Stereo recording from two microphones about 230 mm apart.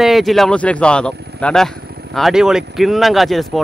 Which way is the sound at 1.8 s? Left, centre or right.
Right.